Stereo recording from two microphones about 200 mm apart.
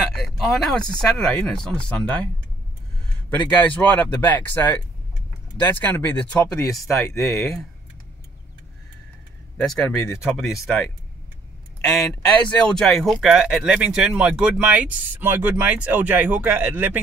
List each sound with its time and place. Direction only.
0.1 s speech: centre (ahead or behind)
3.3 s speech: 10° left (ahead or behind)
9.6 s speech: centre (ahead or behind)
11.8 s speech: centre (ahead or behind)